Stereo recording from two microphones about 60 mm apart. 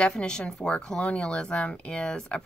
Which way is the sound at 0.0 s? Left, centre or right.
Centre.